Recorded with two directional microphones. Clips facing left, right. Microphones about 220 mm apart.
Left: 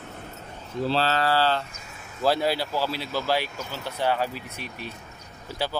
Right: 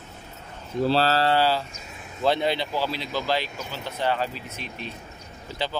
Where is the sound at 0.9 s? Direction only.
40° right (ahead or behind).